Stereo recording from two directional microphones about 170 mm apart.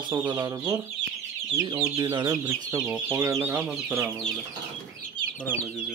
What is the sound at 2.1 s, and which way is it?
Speech, 20° right (ahead or behind).